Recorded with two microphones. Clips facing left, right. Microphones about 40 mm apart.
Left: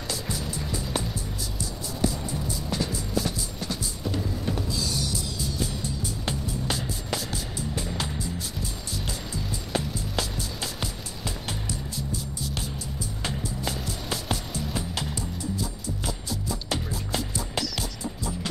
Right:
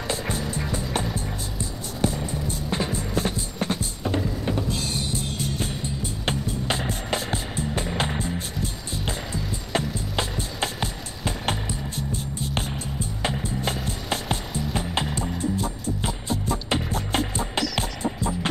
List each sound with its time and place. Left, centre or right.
0.5 s music: right
6.2 s skateboard: right
8.9 s music: right